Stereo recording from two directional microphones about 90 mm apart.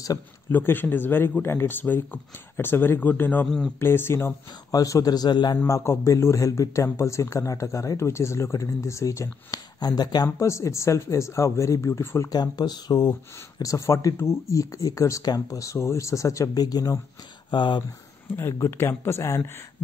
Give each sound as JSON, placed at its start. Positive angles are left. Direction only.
{"t": 0.5, "sound": "speech", "side_deg": 20}
{"t": 3.4, "sound": "speech", "side_deg": 0}
{"t": 3.8, "sound": "speech", "side_deg": 25}
{"t": 4.7, "sound": "a man's voice", "side_deg": 40}
{"t": 5.7, "sound": "speech", "side_deg": 35}
{"t": 10.2, "sound": "speech", "side_deg": 35}
{"t": 12.3, "sound": "a man's voice", "side_deg": 50}
{"t": 13.6, "sound": "speech", "side_deg": 35}
{"t": 17.5, "sound": "speech", "side_deg": 60}
{"t": 18.3, "sound": "speech", "side_deg": 25}